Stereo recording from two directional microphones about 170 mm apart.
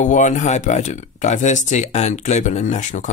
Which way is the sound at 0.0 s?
45° left (ahead or behind).